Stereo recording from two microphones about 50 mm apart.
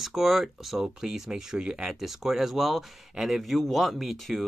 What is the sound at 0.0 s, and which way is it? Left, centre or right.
Speech, centre.